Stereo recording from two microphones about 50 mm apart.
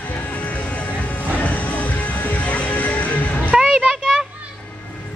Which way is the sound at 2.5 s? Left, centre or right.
Left.